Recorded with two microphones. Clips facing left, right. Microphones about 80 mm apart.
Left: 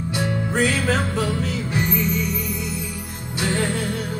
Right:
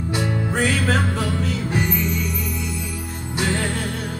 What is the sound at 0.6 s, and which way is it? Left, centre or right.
Music, centre.